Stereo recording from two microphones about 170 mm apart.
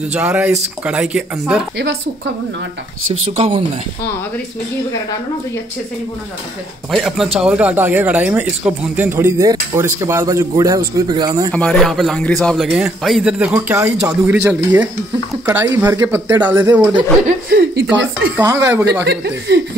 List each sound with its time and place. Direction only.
0.1 s a man's voice: 5° right (ahead or behind)
3.3 s speech: 35° right (ahead or behind)
6.9 s a man's voice: centre (ahead or behind); by 11.5 s 25° right (ahead or behind)
11.5 s a man's voice: 5° left (ahead or behind); by 16.9 s 10° right (ahead or behind)
17.5 s speech: 70° right (ahead or behind)
18.3 s speech: 15° right (ahead or behind)
19.0 s speech: 90° right